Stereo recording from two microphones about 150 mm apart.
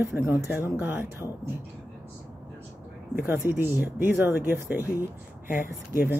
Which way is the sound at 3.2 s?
15° right (ahead or behind).